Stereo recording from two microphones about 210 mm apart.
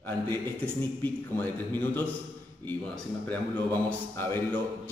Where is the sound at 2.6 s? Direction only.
10° left (ahead or behind).